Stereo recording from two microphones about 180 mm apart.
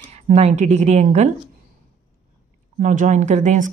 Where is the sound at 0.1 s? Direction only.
35° right (ahead or behind).